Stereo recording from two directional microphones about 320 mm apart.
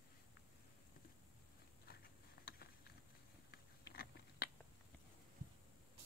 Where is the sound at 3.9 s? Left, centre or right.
Left.